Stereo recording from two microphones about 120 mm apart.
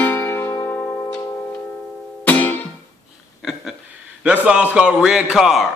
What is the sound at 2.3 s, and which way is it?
Music, 15° left (ahead or behind).